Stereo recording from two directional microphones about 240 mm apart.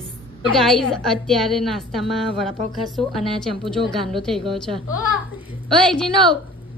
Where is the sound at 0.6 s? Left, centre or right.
Centre.